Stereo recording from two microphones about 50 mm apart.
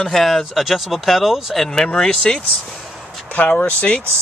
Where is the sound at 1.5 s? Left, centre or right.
Centre.